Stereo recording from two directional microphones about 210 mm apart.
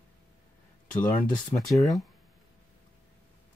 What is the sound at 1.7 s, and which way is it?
Speech, centre (ahead or behind).